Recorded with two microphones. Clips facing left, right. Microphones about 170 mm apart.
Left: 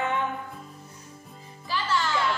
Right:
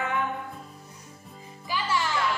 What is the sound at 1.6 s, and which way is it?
Music, 15° right (ahead or behind).